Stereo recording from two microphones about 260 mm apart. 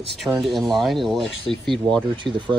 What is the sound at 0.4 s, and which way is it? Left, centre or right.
Speech, centre.